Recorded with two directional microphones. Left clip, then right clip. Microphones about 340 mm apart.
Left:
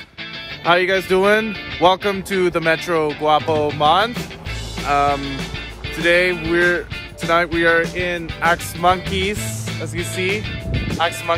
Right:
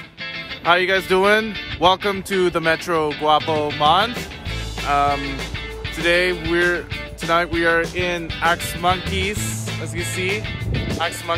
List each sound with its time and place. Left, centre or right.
0.7 s speech: centre